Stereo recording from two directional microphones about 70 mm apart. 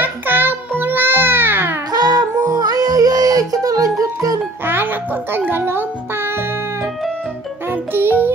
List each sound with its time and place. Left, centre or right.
0.0 s music: right
1.9 s music: right
5.3 s music: right
7.7 s music: right